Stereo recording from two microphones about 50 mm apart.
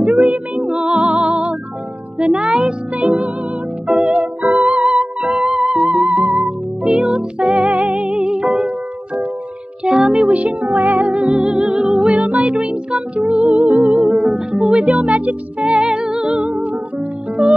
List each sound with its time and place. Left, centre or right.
0.3 s music: centre
5.2 s music: centre
5.7 s music: centre
7.5 s music: centre
7.8 s music: right
10.3 s music: right
12.0 s music: right
13.5 s music: right
14.1 s music: centre
14.8 s music: right
16.4 s music: right